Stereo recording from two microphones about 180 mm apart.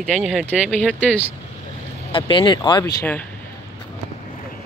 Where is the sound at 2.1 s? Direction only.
25° left (ahead or behind).